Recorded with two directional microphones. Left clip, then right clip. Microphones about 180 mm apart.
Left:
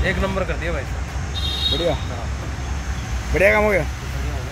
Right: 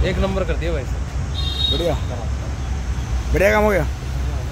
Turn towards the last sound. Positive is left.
turn(degrees=-15)  # may be behind; listen again after turning